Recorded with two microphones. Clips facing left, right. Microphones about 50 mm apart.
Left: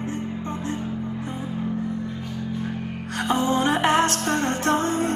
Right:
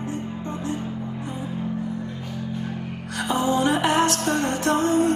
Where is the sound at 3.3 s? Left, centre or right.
Left.